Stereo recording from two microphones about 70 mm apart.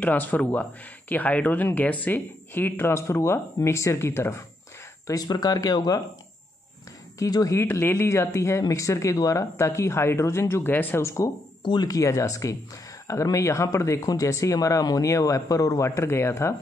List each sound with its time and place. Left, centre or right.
0.0 s speech: left
5.2 s speech: left
7.2 s speech: left
7.5 s speech: left
11.1 s speech: left
11.6 s speech: left
12.0 s speech: left
16.0 s speech: left